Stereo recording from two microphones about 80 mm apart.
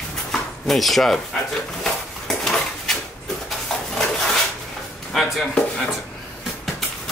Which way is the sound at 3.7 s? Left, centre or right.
Centre.